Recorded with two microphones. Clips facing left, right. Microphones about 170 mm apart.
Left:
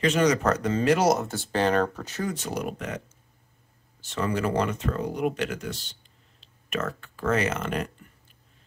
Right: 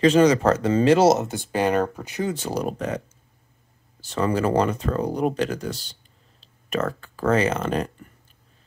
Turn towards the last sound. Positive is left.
turn(degrees=-30)  # may be behind; listen again after turning